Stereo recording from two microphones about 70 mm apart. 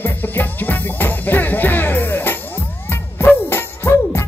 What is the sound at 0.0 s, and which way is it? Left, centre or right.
Music, left.